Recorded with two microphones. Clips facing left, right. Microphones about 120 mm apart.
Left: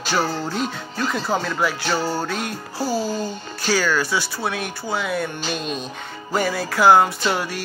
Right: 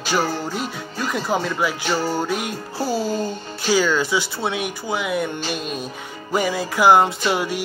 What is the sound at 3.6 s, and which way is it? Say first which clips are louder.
Speech: right 2 dB; 20° right (ahead or behind).